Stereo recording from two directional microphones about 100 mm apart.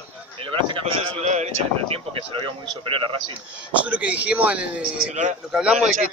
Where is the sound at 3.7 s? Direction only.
15° right (ahead or behind).